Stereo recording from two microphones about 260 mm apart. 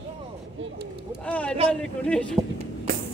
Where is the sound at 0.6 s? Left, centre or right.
Right.